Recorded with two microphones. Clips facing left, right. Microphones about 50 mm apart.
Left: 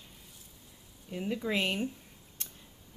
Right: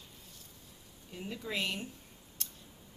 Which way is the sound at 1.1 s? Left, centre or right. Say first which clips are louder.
Left 6 dB; left.